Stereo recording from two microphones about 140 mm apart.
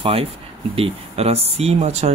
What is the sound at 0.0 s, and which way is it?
Speech, 45° right (ahead or behind).